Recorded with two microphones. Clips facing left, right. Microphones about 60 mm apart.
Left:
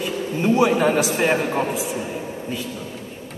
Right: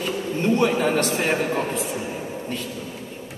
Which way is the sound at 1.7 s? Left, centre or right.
Centre.